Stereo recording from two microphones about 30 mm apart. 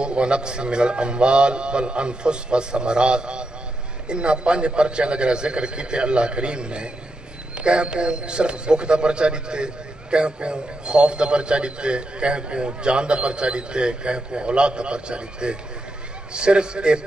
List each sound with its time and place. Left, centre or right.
0.0 s a man's voice: right